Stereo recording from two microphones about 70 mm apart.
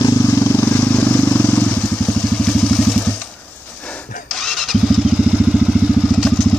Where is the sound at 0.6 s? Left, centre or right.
Left.